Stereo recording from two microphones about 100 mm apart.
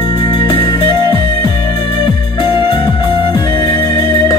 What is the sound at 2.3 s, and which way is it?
Music, 50° left (ahead or behind).